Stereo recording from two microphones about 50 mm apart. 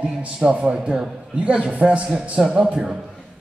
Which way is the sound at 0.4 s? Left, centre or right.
Right.